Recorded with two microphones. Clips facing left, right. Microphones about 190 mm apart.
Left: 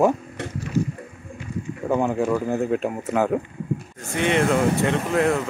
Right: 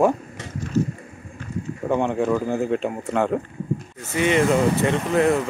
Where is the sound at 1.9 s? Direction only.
Centre (ahead or behind).